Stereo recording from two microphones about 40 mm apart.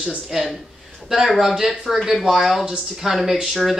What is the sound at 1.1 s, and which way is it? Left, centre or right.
Speech, centre.